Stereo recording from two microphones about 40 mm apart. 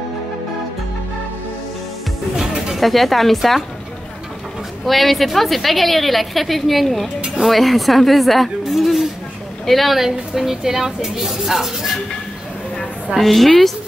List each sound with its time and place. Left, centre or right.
2.3 s music: centre
2.7 s a woman's voice: centre
4.8 s a woman's voice: centre
7.2 s a sound: centre
7.4 s a woman's voice: centre
13.2 s a woman's voice: centre